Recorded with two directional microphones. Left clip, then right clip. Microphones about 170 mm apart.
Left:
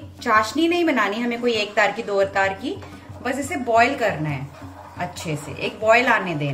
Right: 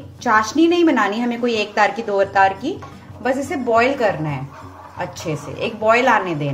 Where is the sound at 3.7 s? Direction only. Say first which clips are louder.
Right 2 dB; 60° right (ahead or behind).